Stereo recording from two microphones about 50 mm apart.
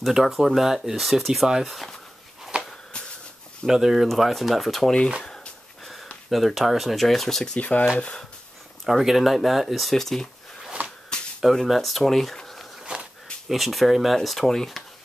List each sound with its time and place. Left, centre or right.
0.1 s speech: centre
2.5 s a sound: right
3.6 s speech: centre
5.2 s a sound: centre
6.3 s speech: centre
7.5 s speech: left
8.8 s speech: centre
11.1 s a sound: centre
11.6 s speech: centre